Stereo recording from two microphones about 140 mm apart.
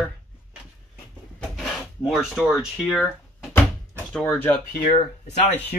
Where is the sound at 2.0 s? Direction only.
Centre (ahead or behind).